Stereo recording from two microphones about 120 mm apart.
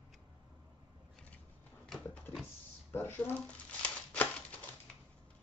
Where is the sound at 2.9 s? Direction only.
15° left (ahead or behind).